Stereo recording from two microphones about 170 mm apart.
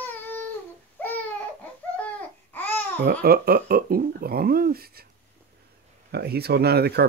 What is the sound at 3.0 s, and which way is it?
Speech, 60° right (ahead or behind).